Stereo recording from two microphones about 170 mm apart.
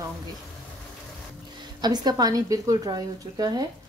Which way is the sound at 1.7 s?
25° right (ahead or behind).